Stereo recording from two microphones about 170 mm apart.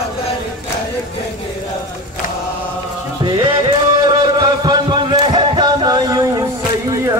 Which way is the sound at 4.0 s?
25° right (ahead or behind).